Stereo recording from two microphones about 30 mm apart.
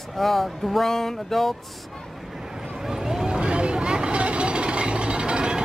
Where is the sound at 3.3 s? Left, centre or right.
Right.